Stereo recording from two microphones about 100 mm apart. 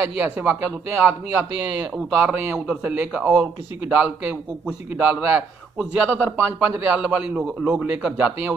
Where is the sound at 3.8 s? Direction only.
20° right (ahead or behind).